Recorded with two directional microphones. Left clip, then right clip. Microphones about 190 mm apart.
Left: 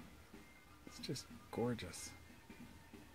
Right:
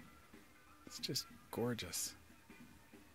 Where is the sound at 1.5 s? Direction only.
25° right (ahead or behind).